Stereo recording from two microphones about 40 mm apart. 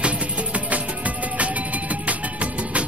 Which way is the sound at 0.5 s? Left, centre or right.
Right.